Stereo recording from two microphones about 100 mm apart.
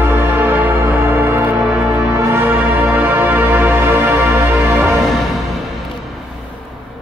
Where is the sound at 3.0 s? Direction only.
20° right (ahead or behind).